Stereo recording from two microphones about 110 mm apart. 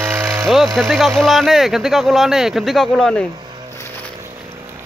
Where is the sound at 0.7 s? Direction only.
Centre (ahead or behind).